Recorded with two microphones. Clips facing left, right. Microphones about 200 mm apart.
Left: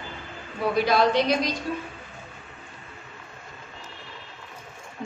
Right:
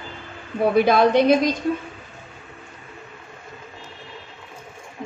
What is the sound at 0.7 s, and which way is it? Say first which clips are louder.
Speech: right 5 dB; 55° right (ahead or behind).